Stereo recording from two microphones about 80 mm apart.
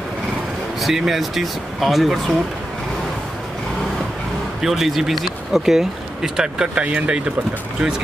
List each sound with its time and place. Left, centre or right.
0.7 s speech: centre
4.6 s speech: centre